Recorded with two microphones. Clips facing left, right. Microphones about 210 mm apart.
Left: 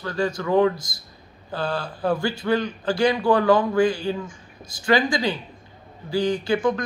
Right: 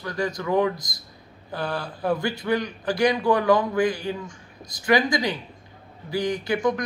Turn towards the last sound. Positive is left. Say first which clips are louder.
# left 3 dB
turn(degrees=-20)  # may be behind; listen again after turning